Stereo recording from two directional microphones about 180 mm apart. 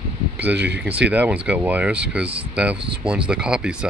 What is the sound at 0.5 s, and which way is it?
Speech, 70° right (ahead or behind).